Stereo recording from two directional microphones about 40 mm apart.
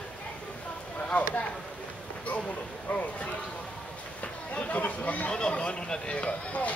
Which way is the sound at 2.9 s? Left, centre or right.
Left.